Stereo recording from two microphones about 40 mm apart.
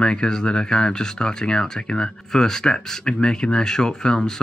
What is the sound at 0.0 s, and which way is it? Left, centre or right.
Speech, centre.